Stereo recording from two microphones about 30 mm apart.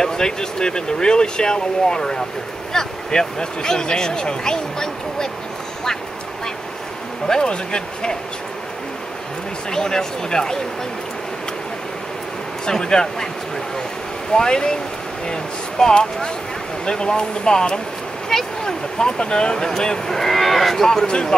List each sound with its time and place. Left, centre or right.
0.0 s speech: left
7.2 s speech: left
9.7 s speech: left
14.3 s speech: left
18.3 s cattle: centre
18.9 s speech: left
19.5 s speech: centre
20.1 s cattle: centre
20.8 s speech: centre